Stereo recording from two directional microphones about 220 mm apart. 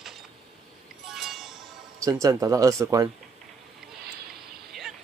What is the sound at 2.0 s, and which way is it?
Speech, 15° right (ahead or behind).